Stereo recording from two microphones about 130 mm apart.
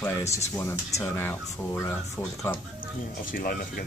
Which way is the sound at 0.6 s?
20° left (ahead or behind).